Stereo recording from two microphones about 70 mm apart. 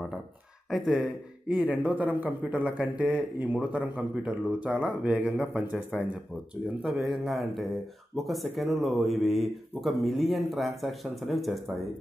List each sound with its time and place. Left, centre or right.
0.7 s speech: centre
1.7 s speech: right
7.0 s speech: centre